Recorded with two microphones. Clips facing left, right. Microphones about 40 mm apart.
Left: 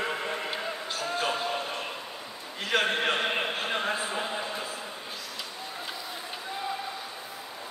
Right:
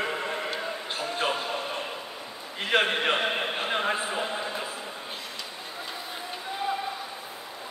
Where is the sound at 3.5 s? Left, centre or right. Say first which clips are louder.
Right 2 dB; right.